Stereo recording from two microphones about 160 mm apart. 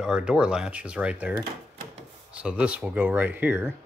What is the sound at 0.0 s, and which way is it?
Speech, 5° right (ahead or behind).